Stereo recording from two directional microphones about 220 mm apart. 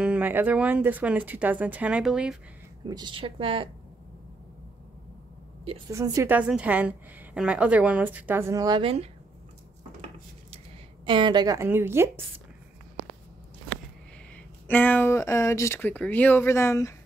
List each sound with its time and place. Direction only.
0.0 s a woman's voice: 5° right (ahead or behind)
2.9 s a woman's voice: 20° right (ahead or behind)
5.9 s a woman's voice: 15° right (ahead or behind)
11.1 s a woman's voice: 20° right (ahead or behind)
14.3 s speech: 5° left (ahead or behind)